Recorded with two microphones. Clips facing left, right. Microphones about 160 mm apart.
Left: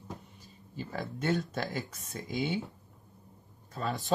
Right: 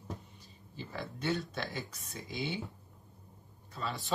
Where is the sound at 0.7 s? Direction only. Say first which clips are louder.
Left 4 dB; 45° left (ahead or behind).